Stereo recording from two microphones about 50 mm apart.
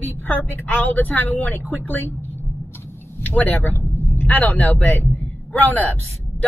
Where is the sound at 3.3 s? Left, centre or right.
Left.